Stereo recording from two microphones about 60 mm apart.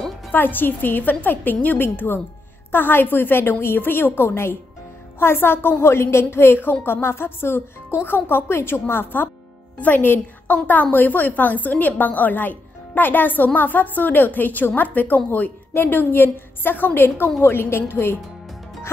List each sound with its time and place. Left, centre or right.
0.3 s a woman's voice: left